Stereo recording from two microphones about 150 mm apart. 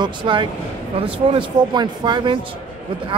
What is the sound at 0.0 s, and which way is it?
A man's voice, 30° right (ahead or behind).